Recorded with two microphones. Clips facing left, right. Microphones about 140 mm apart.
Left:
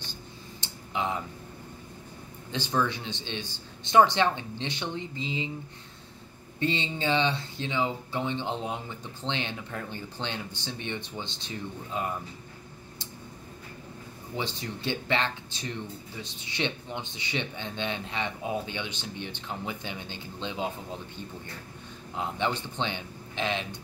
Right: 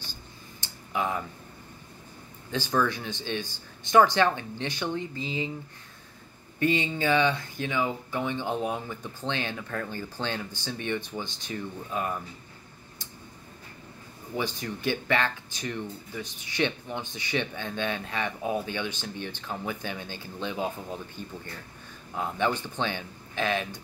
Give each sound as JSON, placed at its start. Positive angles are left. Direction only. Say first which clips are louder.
{"t": 0.6, "sound": "a sound", "louder": "right 2 dB", "side_deg": 20}
{"t": 2.5, "sound": "speech", "louder": "right 2 dB", "side_deg": 20}
{"t": 6.6, "sound": "speech", "louder": "right 3 dB", "side_deg": 25}
{"t": 14.9, "sound": "speech", "louder": "right 2 dB", "side_deg": 20}
{"t": 22.1, "sound": "speech", "louder": "right 2 dB", "side_deg": 20}